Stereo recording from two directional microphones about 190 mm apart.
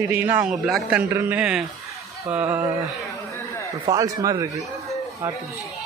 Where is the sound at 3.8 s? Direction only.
20° right (ahead or behind).